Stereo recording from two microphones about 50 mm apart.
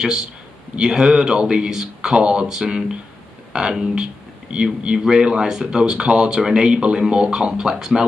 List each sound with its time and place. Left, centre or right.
0.0 s speech: centre